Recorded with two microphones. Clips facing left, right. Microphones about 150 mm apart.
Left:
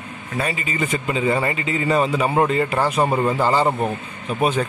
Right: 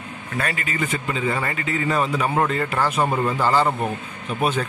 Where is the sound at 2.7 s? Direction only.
30° left (ahead or behind).